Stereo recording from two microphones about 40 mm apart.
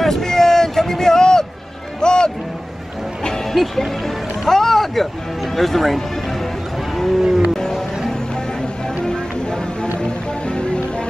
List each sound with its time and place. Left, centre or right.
0.0 s a sound: centre
2.0 s music: centre
4.5 s a sound: centre
5.6 s speech: centre
7.2 s music: centre
10.0 s music: left